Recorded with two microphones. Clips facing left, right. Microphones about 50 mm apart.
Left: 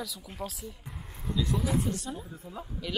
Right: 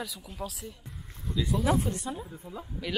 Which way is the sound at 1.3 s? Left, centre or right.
Centre.